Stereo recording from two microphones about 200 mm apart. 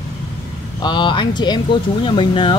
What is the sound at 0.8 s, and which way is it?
Speech, 25° left (ahead or behind).